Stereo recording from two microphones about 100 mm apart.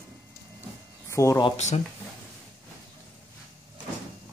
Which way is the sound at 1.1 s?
30° left (ahead or behind).